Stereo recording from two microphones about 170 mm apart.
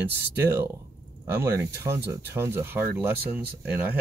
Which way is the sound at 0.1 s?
75° right (ahead or behind).